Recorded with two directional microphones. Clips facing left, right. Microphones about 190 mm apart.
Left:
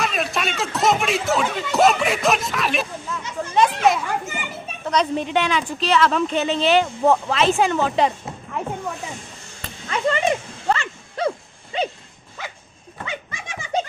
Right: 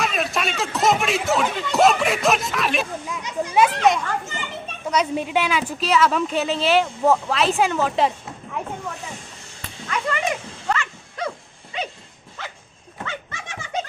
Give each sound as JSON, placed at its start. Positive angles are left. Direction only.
{"t": 0.0, "sound": "speech", "side_deg": 0}
{"t": 3.1, "sound": "speech", "side_deg": -15}
{"t": 4.8, "sound": "speech", "side_deg": -5}
{"t": 9.8, "sound": "a sound", "side_deg": 30}
{"t": 12.4, "sound": "dog", "side_deg": 10}
{"t": 13.0, "sound": "goat", "side_deg": 10}